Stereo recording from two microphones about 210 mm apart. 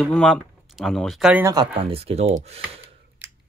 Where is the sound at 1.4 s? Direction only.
20° right (ahead or behind).